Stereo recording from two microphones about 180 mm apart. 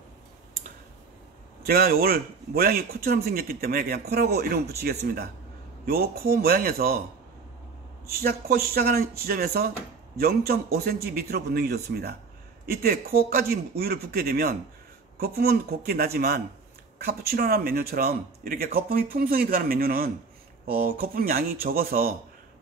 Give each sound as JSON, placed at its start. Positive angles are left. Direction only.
{"t": 1.7, "sound": "speech", "side_deg": -55}
{"t": 8.1, "sound": "speech", "side_deg": -60}